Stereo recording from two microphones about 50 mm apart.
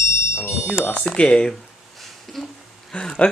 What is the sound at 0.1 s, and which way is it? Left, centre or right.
Alarm, left.